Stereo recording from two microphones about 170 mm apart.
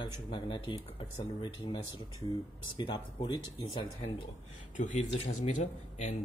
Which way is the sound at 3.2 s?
25° left (ahead or behind).